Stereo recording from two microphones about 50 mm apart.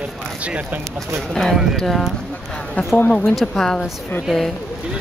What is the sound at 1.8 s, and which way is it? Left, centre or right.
Speech, centre.